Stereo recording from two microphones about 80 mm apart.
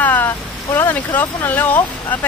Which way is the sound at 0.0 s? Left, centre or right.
Left.